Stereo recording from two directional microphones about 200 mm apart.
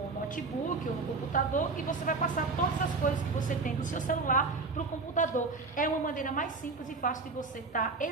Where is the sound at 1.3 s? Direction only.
40° left (ahead or behind).